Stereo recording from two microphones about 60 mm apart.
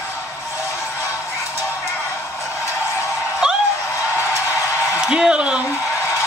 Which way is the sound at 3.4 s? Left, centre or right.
Centre.